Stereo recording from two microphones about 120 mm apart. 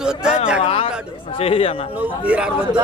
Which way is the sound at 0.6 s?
55° left (ahead or behind).